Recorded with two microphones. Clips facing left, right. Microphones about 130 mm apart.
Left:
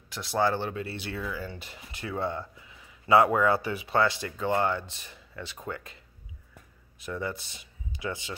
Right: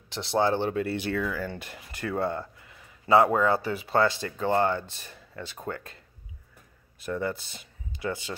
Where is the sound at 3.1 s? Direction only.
30° right (ahead or behind).